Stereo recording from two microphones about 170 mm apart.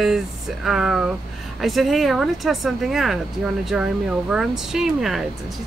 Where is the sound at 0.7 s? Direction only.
5° right (ahead or behind).